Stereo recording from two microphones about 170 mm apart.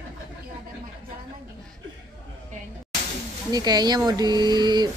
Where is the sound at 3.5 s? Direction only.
25° right (ahead or behind).